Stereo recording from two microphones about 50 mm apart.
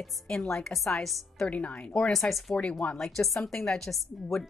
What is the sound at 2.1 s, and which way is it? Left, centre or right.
Speech, centre.